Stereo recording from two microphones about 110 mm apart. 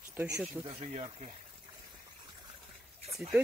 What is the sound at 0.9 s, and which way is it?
Speech, 85° right.